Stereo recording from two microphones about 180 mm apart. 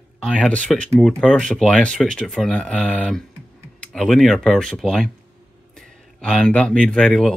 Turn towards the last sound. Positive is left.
turn(degrees=5)  # may be behind; listen again after turning